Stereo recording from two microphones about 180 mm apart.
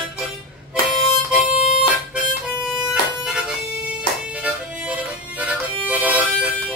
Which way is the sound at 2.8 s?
5° right (ahead or behind).